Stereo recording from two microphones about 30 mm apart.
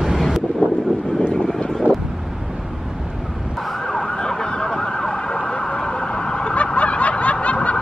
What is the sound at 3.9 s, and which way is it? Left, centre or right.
Emergency vehicle, left.